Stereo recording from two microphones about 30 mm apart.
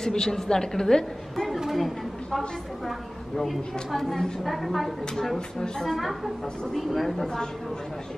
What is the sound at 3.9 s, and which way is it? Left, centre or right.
A woman's voice, centre.